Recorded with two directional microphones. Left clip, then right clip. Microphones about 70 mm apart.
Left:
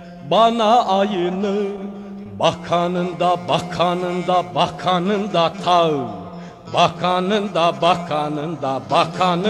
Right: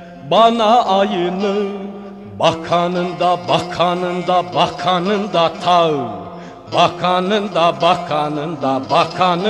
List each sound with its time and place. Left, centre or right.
0.3 s mantra: left